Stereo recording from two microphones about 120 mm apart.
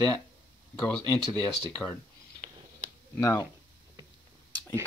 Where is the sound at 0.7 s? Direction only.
10° left (ahead or behind).